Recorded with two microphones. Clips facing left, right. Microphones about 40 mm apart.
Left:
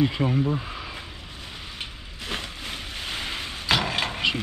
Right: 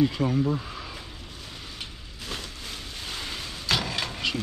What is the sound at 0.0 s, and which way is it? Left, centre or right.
Speech, left.